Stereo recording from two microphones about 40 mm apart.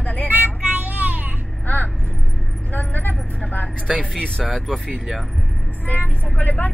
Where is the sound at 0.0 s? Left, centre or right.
Left.